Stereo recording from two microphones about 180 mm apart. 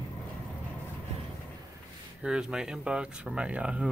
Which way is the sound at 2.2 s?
5° right (ahead or behind).